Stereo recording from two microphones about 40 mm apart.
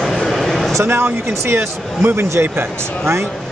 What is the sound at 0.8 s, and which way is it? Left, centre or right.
Speech, right.